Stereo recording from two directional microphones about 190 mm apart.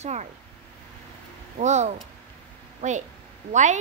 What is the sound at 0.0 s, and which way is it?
Speech, 35° right (ahead or behind).